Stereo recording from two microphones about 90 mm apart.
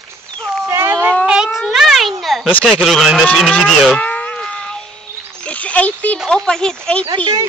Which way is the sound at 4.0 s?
15° left (ahead or behind).